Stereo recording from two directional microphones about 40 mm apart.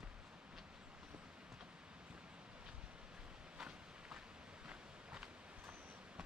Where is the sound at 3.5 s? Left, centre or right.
Centre.